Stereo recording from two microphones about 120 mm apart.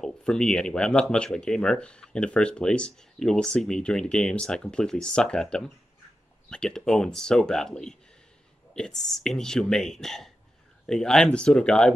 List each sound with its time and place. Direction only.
0.0 s speech: 5° left (ahead or behind)